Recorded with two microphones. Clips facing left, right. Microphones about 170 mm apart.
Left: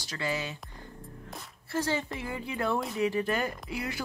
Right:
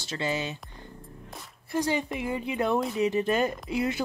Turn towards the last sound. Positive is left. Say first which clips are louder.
# right 7 dB
turn(degrees=-20)  # may be behind; listen again after turning